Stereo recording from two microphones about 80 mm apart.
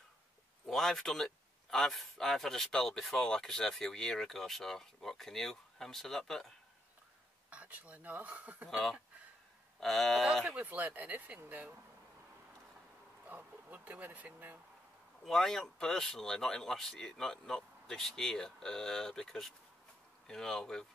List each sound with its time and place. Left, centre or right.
0.7 s speech: centre
7.4 s speech: centre
8.6 s speech: centre
10.4 s speech: centre
13.3 s speech: right
15.2 s speech: centre